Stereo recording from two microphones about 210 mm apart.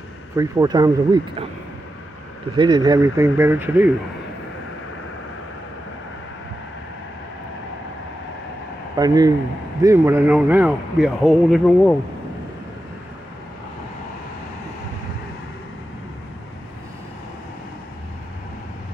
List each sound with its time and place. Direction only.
0.4 s a man's voice: 15° right (ahead or behind)
2.5 s a man's voice: 20° right (ahead or behind)
8.9 s a man's voice: 20° right (ahead or behind); by 11.9 s centre (ahead or behind)